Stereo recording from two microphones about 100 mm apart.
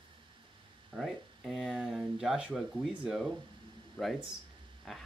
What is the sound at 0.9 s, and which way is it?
Speech, centre (ahead or behind).